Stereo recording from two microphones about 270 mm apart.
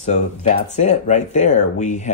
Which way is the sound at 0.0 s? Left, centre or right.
Left.